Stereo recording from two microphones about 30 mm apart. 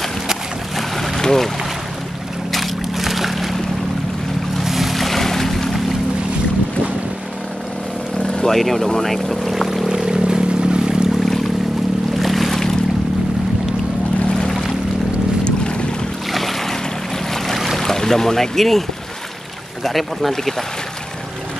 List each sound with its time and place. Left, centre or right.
0.7 s boat: centre
1.2 s speech: centre
2.5 s boat: centre
4.6 s boat: centre
8.2 s vehicle: left
8.5 s speech: centre
9.5 s a sound: centre
10.0 s a sound: right
12.2 s boat: centre
15.4 s boat: left
16.3 s waves: centre
17.7 s speech: centre